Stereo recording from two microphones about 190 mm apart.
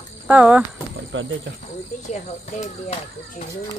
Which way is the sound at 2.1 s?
35° left (ahead or behind).